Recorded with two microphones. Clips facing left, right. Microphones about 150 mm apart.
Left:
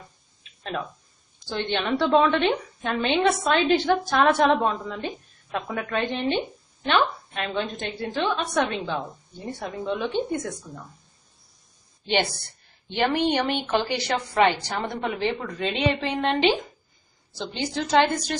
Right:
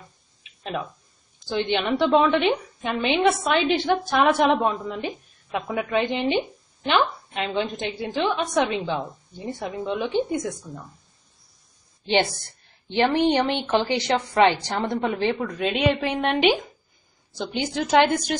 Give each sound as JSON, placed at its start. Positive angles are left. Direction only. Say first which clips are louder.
{"t": 1.5, "sound": "a woman's voice", "louder": "right 2 dB", "side_deg": -10}
{"t": 13.2, "sound": "a woman's voice", "louder": "right 3 dB", "side_deg": -15}